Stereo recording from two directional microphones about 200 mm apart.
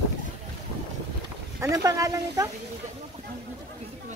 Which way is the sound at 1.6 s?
15° right (ahead or behind).